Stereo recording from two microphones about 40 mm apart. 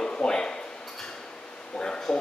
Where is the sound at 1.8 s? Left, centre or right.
Left.